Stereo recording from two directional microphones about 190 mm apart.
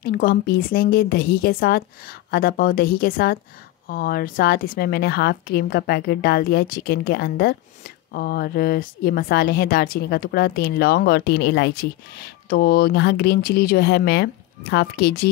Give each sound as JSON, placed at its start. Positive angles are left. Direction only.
{"t": 0.0, "sound": "a woman's voice", "side_deg": 50}